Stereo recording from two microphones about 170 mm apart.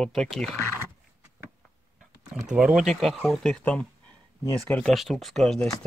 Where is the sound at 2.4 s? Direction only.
5° right (ahead or behind).